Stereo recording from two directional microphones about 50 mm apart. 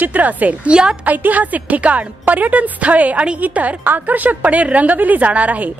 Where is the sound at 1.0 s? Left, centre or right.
Right.